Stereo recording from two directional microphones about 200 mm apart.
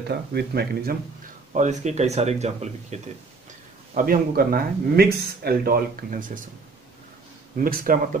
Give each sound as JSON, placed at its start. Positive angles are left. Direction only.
{"t": 0.1, "sound": "speech", "side_deg": -55}
{"t": 1.5, "sound": "speech", "side_deg": -35}
{"t": 3.9, "sound": "speech", "side_deg": -45}
{"t": 7.5, "sound": "speech", "side_deg": -45}